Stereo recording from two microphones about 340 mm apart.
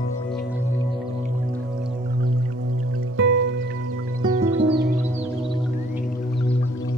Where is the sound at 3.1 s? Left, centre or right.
Right.